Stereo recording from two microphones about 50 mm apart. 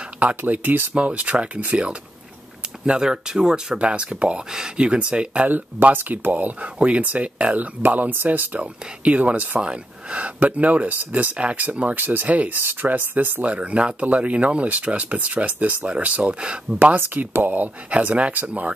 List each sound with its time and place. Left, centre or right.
0.5 s speech: right
0.9 s speech: right
5.5 s speech: right
7.8 s speech: right
8.5 s speech: right
9.6 s speech: right
11.9 s speech: right
12.3 s speech: right
12.5 s speech: right
13.5 s speech: right
16.7 s speech: right